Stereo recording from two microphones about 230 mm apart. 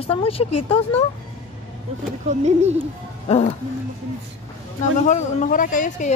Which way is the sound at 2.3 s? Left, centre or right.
Right.